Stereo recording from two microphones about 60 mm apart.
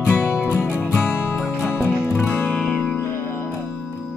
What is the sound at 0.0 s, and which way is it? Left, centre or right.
Music, right.